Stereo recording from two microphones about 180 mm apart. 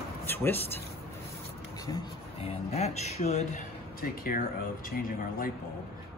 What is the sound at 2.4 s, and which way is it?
Speech, 35° left (ahead or behind).